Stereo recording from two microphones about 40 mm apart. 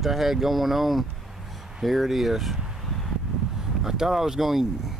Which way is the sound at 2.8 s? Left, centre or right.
Centre.